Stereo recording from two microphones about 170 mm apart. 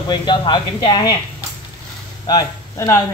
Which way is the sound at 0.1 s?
25° left (ahead or behind).